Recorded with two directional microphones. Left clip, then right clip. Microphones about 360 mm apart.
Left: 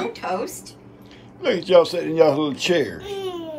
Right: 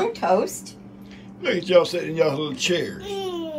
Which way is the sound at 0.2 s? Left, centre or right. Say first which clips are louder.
Right 6 dB; centre.